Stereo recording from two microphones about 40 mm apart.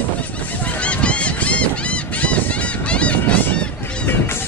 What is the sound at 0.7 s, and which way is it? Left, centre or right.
Honk, left.